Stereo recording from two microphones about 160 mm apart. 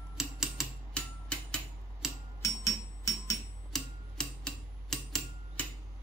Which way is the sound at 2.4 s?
20° left (ahead or behind).